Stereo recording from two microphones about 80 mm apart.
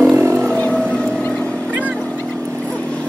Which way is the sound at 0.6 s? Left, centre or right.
Centre.